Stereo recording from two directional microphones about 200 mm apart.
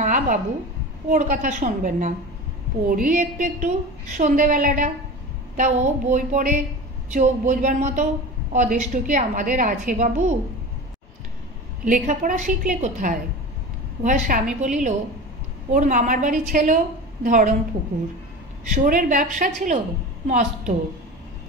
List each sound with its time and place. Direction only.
0.0 s a sound: 40° right (ahead or behind)
1.1 s a woman's voice: 40° right (ahead or behind)
11.8 s a woman's voice: 40° right (ahead or behind)
15.7 s a woman's voice: 40° right (ahead or behind)
18.7 s a woman's voice: 40° right (ahead or behind)